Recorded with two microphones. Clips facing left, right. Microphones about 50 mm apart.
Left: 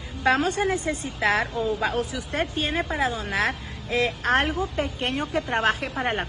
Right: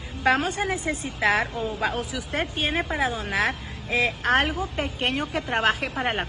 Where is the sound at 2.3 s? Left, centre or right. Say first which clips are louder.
Even; right.